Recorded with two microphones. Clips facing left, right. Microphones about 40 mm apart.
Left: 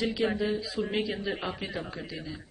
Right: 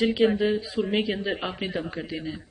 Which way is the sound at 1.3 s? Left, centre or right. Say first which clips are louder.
Right 4 dB; right.